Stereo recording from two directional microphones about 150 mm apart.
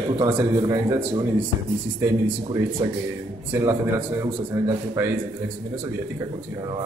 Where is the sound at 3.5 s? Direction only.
15° right (ahead or behind).